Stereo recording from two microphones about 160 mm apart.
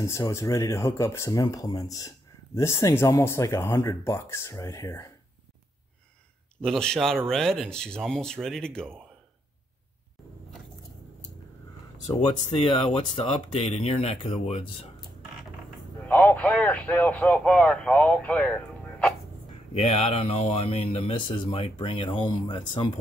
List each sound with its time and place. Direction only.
0.0 s speech: 20° left (ahead or behind)
6.6 s speech: 5° left (ahead or behind)
12.6 s speech: 30° left (ahead or behind)
16.1 s speech: 10° left (ahead or behind)
19.7 s speech: 40° left (ahead or behind)